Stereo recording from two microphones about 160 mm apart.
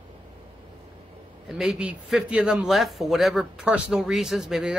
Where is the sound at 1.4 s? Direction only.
5° right (ahead or behind).